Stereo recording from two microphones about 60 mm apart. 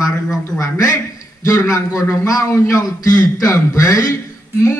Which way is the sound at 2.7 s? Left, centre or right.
Left.